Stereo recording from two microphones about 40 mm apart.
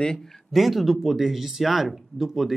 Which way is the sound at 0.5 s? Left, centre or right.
Centre.